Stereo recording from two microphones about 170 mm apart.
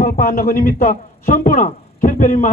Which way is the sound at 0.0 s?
60° left (ahead or behind).